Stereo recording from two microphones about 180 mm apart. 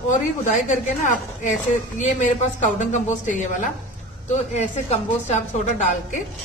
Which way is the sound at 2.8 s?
45° left (ahead or behind).